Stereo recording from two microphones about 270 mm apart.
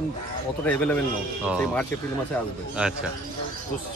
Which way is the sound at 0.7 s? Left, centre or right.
Centre.